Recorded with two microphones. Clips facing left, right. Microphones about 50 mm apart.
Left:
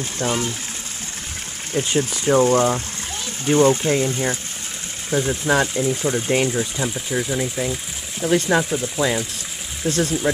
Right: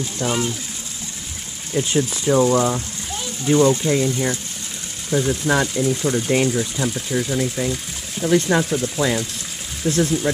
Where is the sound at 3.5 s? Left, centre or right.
Left.